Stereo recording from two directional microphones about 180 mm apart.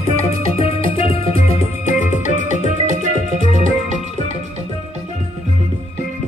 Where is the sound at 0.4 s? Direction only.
30° left (ahead or behind).